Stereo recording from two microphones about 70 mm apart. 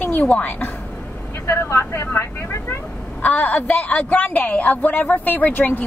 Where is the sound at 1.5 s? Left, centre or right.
Left.